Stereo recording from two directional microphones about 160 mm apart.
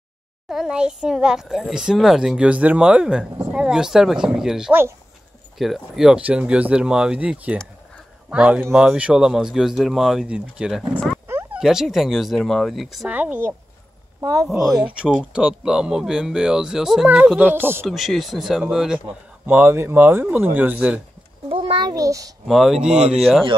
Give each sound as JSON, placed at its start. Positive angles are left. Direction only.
{"t": 0.5, "sound": "a child's voice", "side_deg": -5}
{"t": 14.6, "sound": "speech", "side_deg": -5}
{"t": 17.8, "sound": "speech", "side_deg": 0}
{"t": 21.5, "sound": "a child's voice", "side_deg": -35}
{"t": 22.5, "sound": "speech", "side_deg": 0}